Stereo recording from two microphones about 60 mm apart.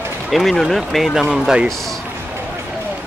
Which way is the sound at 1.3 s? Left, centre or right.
Centre.